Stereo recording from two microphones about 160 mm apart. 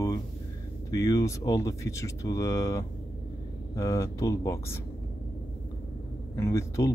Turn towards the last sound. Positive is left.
turn(degrees=20)  # may be behind; listen again after turning